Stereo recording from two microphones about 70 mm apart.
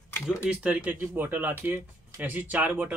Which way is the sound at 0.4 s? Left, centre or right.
Right.